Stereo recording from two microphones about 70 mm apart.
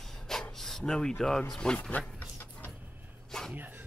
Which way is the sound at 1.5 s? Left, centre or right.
Centre.